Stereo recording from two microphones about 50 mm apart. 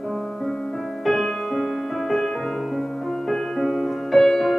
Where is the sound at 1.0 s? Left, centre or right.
Centre.